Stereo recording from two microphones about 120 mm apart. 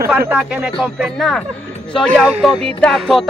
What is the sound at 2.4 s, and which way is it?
Speech, centre (ahead or behind).